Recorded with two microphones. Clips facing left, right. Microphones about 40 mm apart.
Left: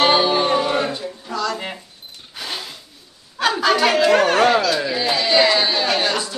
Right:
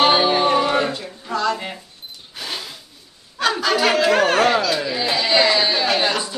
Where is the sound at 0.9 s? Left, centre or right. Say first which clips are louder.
Right 1 dB; right.